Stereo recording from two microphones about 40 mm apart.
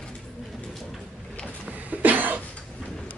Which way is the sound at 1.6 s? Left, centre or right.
Right.